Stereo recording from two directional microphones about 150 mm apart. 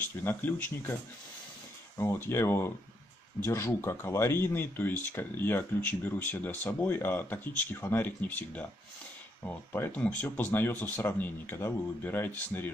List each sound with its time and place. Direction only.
0.2 s speech: 15° left (ahead or behind)
2.0 s speech: 15° left (ahead or behind)